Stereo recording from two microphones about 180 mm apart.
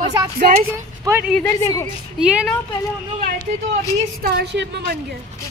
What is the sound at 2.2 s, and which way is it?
Speech, 5° right (ahead or behind).